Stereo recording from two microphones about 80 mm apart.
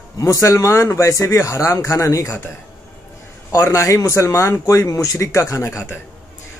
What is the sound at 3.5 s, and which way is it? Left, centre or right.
Speech, left.